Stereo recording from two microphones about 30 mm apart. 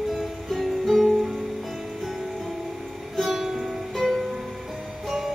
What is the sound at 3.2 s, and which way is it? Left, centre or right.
Music, centre.